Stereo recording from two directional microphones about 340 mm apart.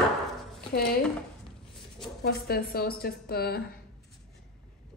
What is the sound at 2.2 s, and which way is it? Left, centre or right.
Speech, left.